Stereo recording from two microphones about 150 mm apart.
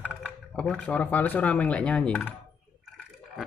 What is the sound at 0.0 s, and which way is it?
Speech, centre (ahead or behind).